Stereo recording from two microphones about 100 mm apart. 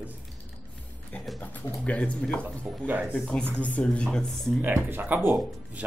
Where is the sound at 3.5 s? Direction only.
10° left (ahead or behind).